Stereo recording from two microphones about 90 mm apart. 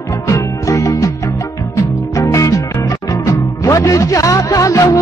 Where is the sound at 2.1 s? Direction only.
35° left (ahead or behind).